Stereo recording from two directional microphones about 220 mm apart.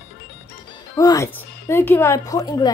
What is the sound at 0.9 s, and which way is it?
A woman's voice, 15° left (ahead or behind).